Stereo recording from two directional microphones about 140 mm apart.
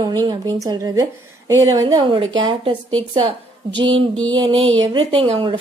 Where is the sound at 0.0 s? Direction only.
30° right (ahead or behind).